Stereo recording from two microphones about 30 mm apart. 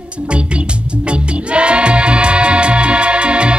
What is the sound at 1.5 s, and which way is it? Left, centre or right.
Music, right.